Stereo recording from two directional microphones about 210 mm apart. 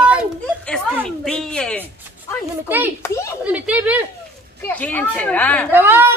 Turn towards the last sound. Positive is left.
turn(degrees=-10)  # may be behind; listen again after turning